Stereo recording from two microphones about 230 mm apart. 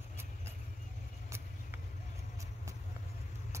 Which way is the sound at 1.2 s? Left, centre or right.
Centre.